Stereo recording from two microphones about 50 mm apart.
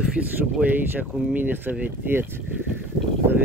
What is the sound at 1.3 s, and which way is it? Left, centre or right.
Speech, right.